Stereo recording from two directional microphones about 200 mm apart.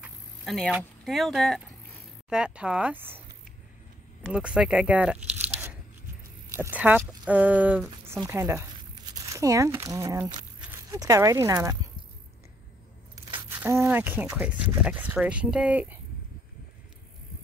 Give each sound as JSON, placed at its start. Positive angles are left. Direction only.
{"t": 0.0, "sound": "speech", "side_deg": 0}
{"t": 4.3, "sound": "speech", "side_deg": -5}
{"t": 13.6, "sound": "speech", "side_deg": -10}